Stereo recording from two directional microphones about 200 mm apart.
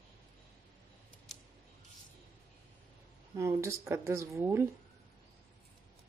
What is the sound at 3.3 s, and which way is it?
Speech, 15° right (ahead or behind).